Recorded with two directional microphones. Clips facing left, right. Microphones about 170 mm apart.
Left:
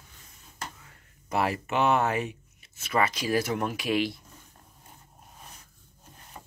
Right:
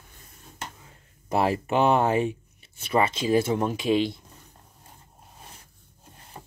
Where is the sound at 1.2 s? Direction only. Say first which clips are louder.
Right 4 dB; 30° right (ahead or behind).